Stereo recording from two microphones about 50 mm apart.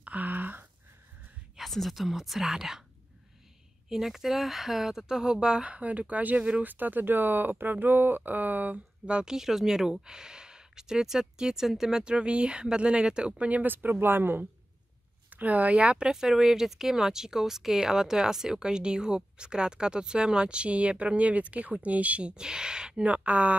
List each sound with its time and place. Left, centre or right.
0.0 s a sound: right
1.6 s speech: centre
3.9 s speech: centre; by 6.6 s right
6.6 s speech: right; by 12.0 s centre
12.0 s speech: centre
13.4 s speech: right
15.2 s speech: right
16.1 s speech: centre
23.0 s speech: right